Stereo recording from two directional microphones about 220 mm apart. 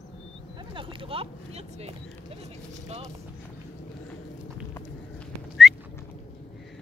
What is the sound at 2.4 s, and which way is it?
Speech, 30° right (ahead or behind).